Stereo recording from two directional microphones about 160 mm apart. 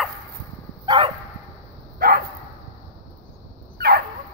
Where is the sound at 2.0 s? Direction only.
60° right (ahead or behind).